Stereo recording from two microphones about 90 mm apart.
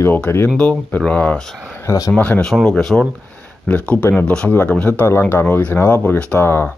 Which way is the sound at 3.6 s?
20° left (ahead or behind).